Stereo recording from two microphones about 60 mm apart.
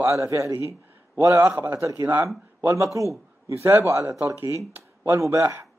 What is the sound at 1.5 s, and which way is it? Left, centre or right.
Speech, right.